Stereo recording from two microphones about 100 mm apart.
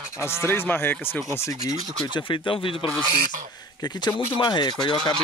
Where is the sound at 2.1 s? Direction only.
55° left (ahead or behind).